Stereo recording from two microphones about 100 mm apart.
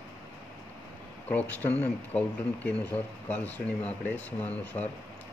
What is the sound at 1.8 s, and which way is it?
Speech, 10° left (ahead or behind).